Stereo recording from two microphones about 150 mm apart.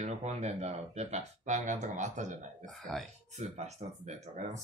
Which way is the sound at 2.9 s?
5° left (ahead or behind).